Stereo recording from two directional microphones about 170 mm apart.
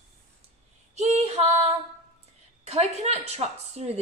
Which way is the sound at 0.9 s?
40° right (ahead or behind).